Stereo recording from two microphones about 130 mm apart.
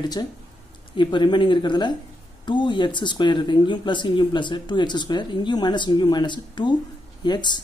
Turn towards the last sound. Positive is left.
turn(degrees=35)  # may be behind; listen again after turning